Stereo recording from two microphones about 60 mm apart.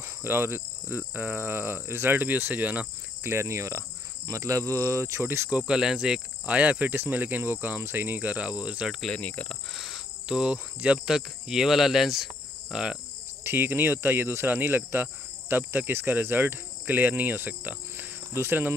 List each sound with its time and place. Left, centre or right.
0.2 s speech: right
3.3 s speech: right
4.3 s cricket: right
5.5 s cricket: centre
6.4 s speech: right
7.8 s cricket: right
9.1 s cricket: left
9.8 s cricket: centre
10.2 s cricket: centre
13.4 s speech: right
18.3 s speech: right